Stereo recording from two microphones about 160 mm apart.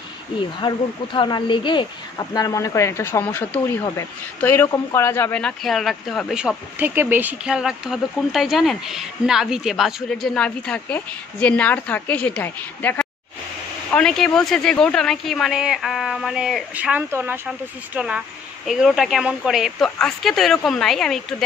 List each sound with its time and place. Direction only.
0.6 s speech: 30° left (ahead or behind); by 21.2 s centre (ahead or behind)